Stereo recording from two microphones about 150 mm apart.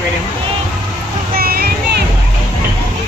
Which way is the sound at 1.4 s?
90° right.